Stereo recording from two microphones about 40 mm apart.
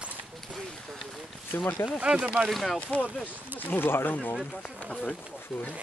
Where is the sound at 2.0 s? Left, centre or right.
Right.